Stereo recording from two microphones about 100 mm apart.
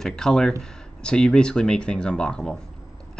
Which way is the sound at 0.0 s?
5° left (ahead or behind).